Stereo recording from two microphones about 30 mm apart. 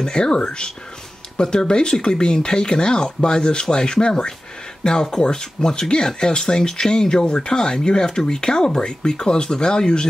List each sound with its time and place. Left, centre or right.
0.0 s speech: left